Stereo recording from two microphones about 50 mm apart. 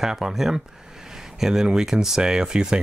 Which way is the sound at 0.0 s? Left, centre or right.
Centre.